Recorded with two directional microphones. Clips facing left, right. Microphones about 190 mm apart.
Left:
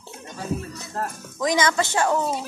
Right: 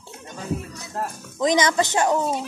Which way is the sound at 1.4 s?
20° right (ahead or behind).